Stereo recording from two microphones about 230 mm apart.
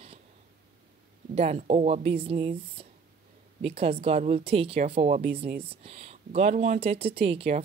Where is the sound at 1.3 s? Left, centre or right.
Right.